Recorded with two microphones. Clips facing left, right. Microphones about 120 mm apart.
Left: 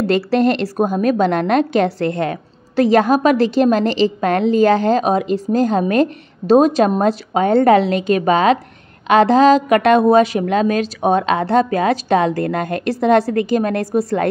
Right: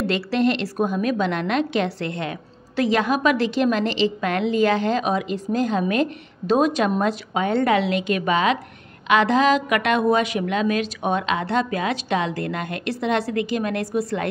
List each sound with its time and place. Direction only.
0.0 s a woman's voice: 40° left (ahead or behind)